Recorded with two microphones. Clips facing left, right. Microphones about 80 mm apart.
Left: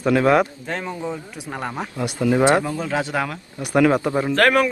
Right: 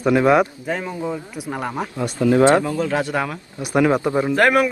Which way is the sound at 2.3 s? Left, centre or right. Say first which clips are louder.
Right 3 dB; centre.